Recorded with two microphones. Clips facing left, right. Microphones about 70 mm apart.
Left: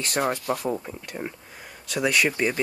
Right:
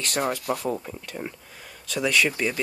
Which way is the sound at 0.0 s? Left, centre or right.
Left.